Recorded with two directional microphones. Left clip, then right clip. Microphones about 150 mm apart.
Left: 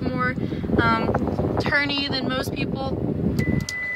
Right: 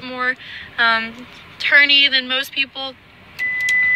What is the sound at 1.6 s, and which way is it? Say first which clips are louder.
Speech: right 13 dB; 10° left (ahead or behind).